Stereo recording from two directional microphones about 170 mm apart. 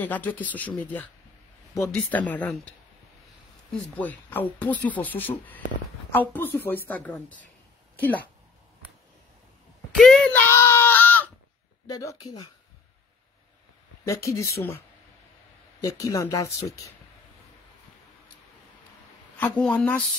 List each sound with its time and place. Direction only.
0.0 s speech: 10° left (ahead or behind)
3.7 s speech: 10° left (ahead or behind)
9.9 s a sound: 5° left (ahead or behind)
11.9 s speech: 20° left (ahead or behind)
14.0 s speech: 15° left (ahead or behind)
15.8 s speech: 20° left (ahead or behind)
19.3 s speech: 5° left (ahead or behind)